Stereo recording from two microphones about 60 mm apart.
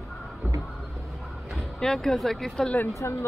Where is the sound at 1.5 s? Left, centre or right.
Centre.